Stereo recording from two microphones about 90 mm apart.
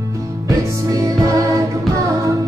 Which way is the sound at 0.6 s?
40° right (ahead or behind).